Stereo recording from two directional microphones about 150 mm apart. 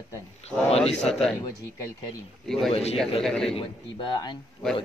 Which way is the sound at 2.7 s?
40° left (ahead or behind).